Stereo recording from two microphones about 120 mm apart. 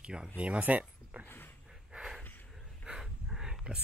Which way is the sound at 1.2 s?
15° left (ahead or behind).